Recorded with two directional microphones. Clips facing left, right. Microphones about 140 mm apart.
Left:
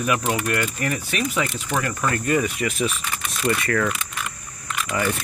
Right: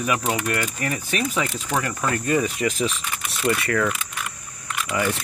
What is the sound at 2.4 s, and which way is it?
Speech, 30° right (ahead or behind).